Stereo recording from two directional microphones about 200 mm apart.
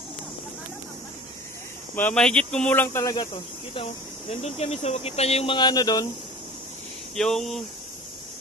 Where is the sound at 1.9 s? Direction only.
5° left (ahead or behind).